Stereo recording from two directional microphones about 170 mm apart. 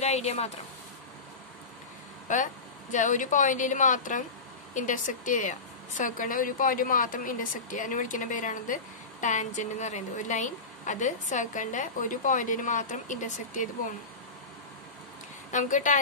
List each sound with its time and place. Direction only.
0.0 s speech: 40° left (ahead or behind)
2.2 s a woman's voice: 50° left (ahead or behind)
15.5 s a woman's voice: 50° left (ahead or behind)